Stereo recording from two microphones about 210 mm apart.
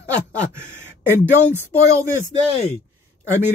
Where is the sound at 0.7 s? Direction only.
10° right (ahead or behind).